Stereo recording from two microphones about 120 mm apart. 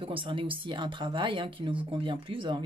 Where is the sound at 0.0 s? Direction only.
45° right (ahead or behind).